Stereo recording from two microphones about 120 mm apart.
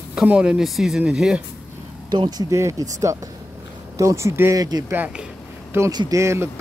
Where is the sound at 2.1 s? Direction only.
35° right (ahead or behind).